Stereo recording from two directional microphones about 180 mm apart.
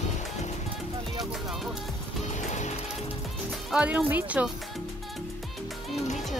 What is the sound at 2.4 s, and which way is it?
Music, 40° left (ahead or behind).